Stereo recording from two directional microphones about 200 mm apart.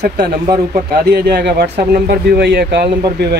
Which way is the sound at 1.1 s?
55° right (ahead or behind).